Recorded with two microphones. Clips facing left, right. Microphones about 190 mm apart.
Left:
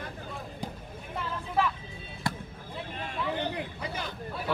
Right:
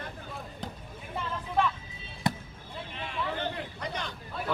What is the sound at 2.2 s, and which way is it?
Basketball bounce, 20° right (ahead or behind).